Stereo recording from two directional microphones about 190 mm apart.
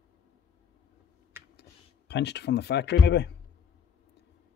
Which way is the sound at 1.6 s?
65° left (ahead or behind).